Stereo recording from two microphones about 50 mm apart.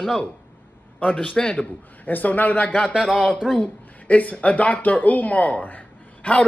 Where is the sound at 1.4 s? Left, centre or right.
Left.